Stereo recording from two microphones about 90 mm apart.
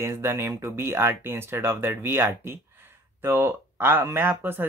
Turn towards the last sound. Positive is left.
turn(degrees=-25)  # may be behind; listen again after turning